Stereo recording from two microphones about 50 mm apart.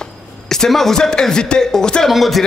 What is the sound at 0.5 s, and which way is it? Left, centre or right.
Speech, centre.